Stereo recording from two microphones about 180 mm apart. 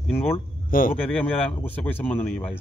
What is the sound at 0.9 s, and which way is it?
Speech, 5° left (ahead or behind).